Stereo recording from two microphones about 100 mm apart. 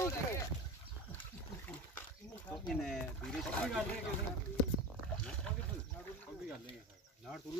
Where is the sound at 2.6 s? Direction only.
5° left (ahead or behind).